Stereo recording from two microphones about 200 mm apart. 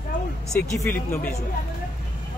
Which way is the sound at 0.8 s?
10° left (ahead or behind).